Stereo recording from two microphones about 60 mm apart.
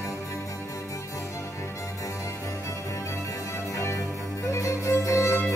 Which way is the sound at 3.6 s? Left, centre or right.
Left.